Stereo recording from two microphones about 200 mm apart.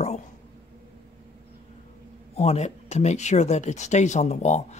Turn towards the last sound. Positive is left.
turn(degrees=35)  # may be behind; listen again after turning